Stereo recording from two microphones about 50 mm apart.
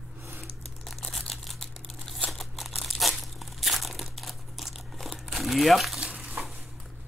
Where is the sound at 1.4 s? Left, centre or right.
Centre.